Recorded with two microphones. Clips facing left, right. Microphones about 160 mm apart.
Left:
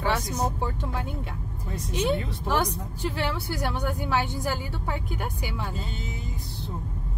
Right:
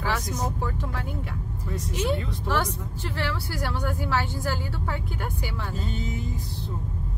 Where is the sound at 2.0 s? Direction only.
15° left (ahead or behind).